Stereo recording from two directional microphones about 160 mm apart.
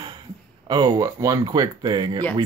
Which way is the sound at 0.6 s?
25° right (ahead or behind).